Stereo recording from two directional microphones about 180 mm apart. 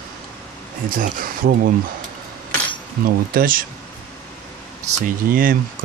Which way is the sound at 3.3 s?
50° right (ahead or behind).